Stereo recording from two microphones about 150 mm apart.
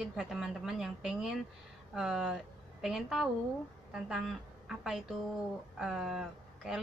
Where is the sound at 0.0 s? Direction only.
5° right (ahead or behind).